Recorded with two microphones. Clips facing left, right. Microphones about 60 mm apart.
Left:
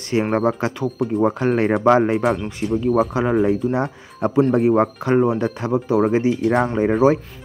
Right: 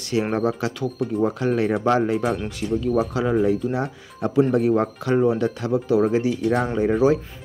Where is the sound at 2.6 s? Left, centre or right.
Left.